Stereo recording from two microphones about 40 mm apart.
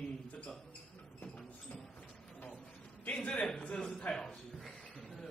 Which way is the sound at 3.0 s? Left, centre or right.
Left.